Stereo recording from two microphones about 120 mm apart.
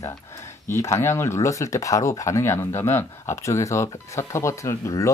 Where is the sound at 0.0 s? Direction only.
25° left (ahead or behind).